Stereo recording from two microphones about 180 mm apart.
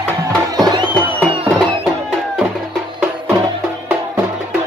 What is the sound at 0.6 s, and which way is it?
Music, 25° right (ahead or behind).